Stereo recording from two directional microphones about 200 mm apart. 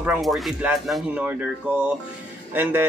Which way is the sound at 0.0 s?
5° right (ahead or behind).